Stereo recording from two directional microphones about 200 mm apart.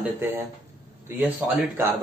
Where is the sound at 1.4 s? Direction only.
10° right (ahead or behind).